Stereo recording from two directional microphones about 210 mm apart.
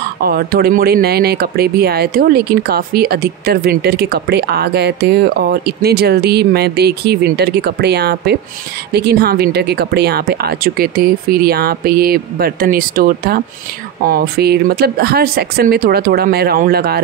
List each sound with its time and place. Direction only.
0.2 s speech: 45° right (ahead or behind)